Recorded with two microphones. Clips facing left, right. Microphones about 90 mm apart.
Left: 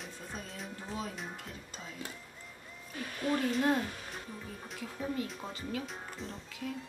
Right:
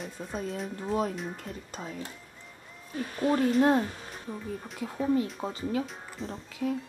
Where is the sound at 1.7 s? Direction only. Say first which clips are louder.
Right 7 dB; 45° right (ahead or behind).